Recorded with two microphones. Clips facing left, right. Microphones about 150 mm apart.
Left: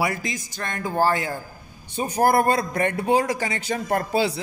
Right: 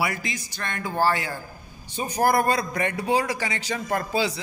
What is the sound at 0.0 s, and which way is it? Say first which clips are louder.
A man's voice: left 2 dB; 40° left (ahead or behind).